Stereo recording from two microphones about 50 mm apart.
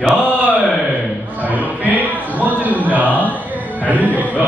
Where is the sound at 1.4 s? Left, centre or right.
Right.